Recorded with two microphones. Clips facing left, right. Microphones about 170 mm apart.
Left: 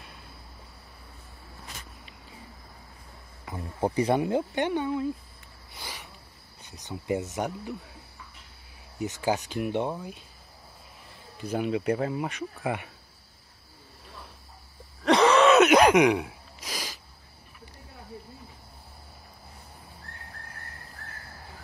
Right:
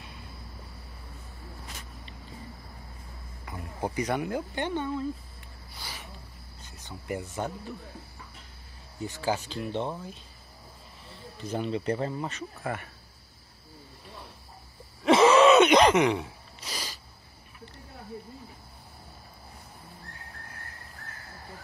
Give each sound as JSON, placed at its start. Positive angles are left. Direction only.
{"t": 3.4, "sound": "speech", "side_deg": 25}
{"t": 5.7, "sound": "a sound", "side_deg": 20}
{"t": 6.7, "sound": "speech", "side_deg": 20}
{"t": 9.0, "sound": "speech", "side_deg": 15}
{"t": 11.3, "sound": "speech", "side_deg": 10}
{"t": 15.0, "sound": "gasp", "side_deg": -5}